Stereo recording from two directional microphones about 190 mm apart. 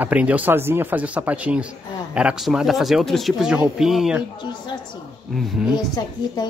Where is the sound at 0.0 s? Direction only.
10° right (ahead or behind).